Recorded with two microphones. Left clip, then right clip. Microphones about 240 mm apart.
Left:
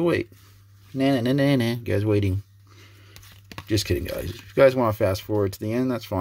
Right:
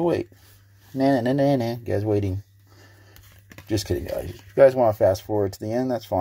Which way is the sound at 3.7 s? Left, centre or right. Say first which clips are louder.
Left 1 dB; left.